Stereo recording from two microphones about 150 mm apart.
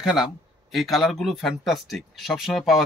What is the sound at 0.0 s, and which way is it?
Speech, centre (ahead or behind).